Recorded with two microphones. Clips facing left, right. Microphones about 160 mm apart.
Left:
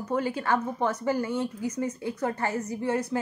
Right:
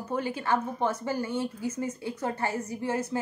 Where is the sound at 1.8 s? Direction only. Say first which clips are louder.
Left 4 dB; 30° right (ahead or behind).